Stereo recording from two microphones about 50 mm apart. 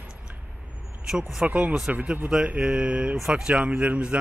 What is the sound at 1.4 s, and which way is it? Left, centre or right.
Speech, right.